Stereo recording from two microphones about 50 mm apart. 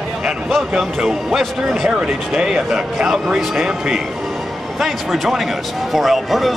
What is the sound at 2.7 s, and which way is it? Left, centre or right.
A man's voice, centre.